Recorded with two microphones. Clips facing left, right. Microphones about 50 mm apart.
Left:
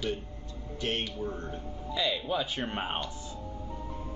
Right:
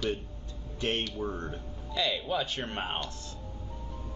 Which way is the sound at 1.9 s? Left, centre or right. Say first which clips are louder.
Even; centre.